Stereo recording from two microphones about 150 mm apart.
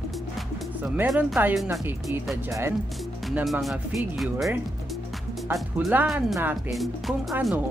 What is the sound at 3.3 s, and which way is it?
Speech, 5° right (ahead or behind).